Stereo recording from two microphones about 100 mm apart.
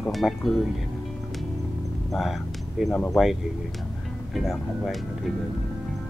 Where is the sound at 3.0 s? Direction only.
Centre (ahead or behind).